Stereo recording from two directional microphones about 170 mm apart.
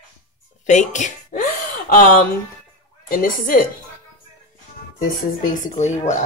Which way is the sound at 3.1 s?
55° left (ahead or behind).